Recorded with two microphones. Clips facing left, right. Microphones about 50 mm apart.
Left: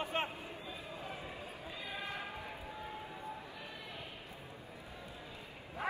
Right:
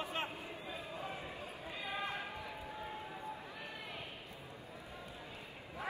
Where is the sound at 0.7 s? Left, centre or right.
Right.